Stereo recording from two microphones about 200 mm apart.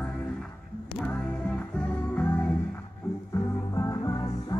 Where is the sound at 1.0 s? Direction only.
5° left (ahead or behind).